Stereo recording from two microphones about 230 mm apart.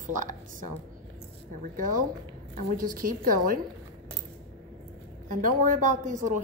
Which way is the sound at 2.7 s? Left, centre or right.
Right.